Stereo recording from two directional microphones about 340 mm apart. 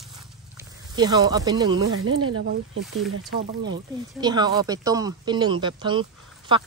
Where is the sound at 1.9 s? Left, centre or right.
Right.